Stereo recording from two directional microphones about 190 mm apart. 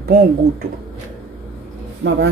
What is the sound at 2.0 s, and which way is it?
Speech, 70° right (ahead or behind).